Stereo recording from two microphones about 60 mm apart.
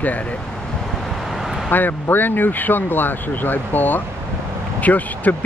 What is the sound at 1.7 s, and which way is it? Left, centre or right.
Speech, left.